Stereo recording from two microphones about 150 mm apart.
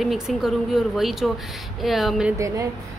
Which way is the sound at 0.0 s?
Centre (ahead or behind).